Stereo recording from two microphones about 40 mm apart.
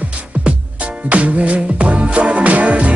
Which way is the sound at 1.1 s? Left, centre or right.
Right.